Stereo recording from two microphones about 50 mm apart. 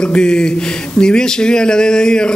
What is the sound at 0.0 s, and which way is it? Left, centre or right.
Speech, centre.